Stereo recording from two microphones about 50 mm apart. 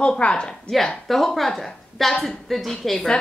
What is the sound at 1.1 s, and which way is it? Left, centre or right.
A woman's voice, centre.